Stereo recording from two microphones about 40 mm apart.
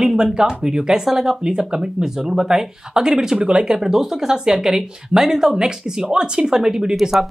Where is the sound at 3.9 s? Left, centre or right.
Centre.